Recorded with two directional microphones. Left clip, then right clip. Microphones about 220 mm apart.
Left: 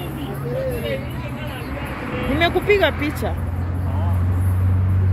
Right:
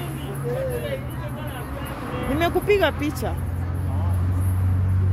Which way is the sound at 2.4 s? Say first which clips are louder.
Left 3 dB; 10° right (ahead or behind).